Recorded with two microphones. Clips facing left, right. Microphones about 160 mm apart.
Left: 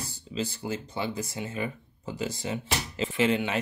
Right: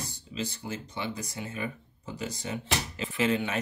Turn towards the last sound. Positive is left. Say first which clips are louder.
# left 2 dB
turn(degrees=30)  # may be behind; listen again after turning